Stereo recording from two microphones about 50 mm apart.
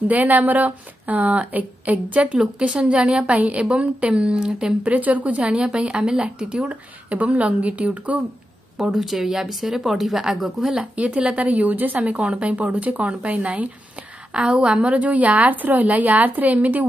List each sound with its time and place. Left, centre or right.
0.1 s a woman's voice: right; by 4.7 s centre
4.8 s a woman's voice: right
8.7 s a woman's voice: centre
10.8 s a woman's voice: right